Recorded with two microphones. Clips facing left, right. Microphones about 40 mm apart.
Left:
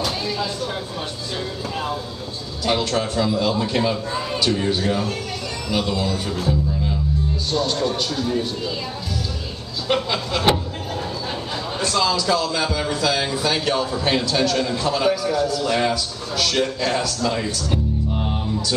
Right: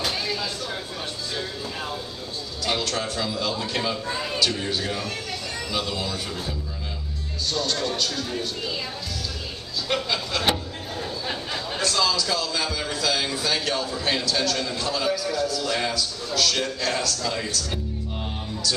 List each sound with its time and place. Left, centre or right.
2.6 s a man's voice: centre
7.5 s speech: centre
9.8 s a man's voice: centre
11.8 s a man's voice: centre